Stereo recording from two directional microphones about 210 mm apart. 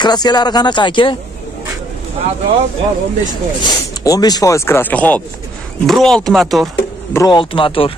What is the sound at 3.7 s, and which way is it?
Speech, 20° left (ahead or behind).